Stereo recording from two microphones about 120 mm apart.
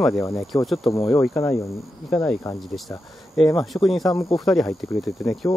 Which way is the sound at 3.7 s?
Centre (ahead or behind).